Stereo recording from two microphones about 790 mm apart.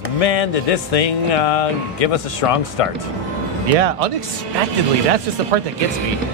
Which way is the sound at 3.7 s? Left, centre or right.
Right.